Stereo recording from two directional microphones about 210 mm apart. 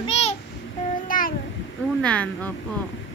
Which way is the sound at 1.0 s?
40° left (ahead or behind).